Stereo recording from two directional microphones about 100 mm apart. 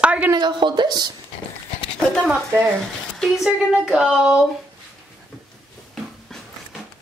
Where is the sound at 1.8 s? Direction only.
10° left (ahead or behind).